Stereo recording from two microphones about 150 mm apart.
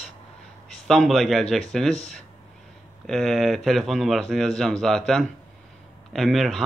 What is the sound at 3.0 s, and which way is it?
Speech, centre (ahead or behind).